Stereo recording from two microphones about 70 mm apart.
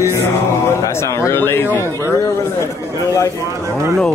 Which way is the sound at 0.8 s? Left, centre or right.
Left.